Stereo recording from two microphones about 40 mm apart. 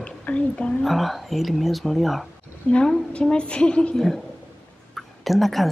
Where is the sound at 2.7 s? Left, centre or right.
Left.